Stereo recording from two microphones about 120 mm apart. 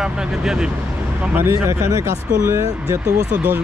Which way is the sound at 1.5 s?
25° right (ahead or behind).